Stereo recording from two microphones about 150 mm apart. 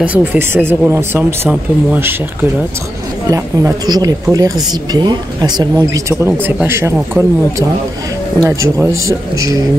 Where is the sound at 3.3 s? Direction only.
20° right (ahead or behind).